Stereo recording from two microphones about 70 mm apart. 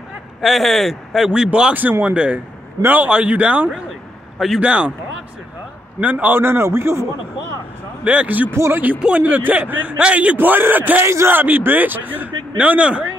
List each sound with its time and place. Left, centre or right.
0.4 s speech: centre
1.7 s a man's voice: right
5.9 s a man's voice: right
8.0 s a man's voice: centre
8.5 s speech: right
9.0 s a man's voice: right